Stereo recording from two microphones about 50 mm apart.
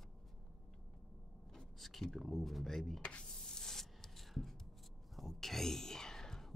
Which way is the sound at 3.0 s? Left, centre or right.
Left.